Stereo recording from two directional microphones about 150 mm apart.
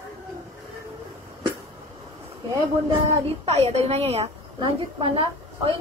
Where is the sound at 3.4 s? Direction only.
45° right (ahead or behind).